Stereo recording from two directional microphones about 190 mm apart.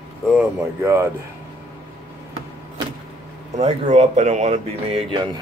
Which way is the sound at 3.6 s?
35° right (ahead or behind).